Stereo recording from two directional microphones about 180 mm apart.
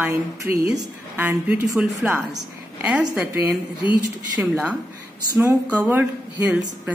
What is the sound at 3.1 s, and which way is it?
Speech, 10° right (ahead or behind).